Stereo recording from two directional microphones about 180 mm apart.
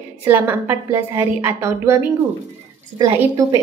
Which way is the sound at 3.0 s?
20° right (ahead or behind).